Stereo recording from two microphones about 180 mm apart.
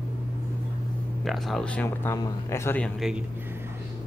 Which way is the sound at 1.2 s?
Centre (ahead or behind).